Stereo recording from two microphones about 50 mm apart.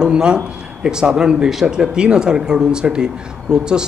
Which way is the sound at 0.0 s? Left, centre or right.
Centre.